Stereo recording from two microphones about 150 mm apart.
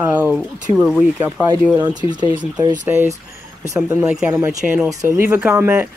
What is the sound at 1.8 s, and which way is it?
Speech, 30° right (ahead or behind).